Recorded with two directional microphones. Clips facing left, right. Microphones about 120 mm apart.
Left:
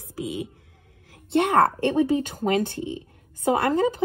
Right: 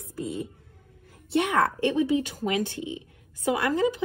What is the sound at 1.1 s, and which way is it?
A woman's voice, 60° left (ahead or behind).